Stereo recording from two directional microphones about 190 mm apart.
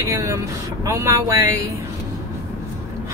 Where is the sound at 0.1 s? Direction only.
15° right (ahead or behind).